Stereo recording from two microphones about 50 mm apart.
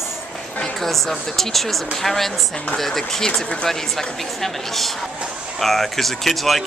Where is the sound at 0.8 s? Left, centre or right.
Centre.